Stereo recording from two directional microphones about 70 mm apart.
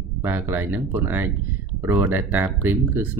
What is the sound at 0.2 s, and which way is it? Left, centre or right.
Speech, right.